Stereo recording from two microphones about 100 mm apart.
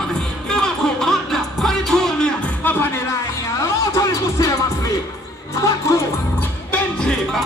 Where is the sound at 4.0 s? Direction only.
35° left (ahead or behind).